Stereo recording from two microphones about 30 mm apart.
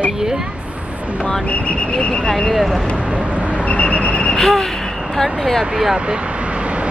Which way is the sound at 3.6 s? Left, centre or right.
Left.